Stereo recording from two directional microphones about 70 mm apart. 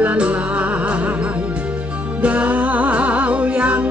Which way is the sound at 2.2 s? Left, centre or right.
Centre.